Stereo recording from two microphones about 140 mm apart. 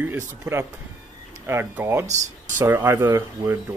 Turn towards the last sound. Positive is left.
turn(degrees=-20)  # may be behind; listen again after turning